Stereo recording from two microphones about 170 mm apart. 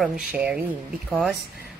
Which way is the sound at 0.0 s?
5° right (ahead or behind).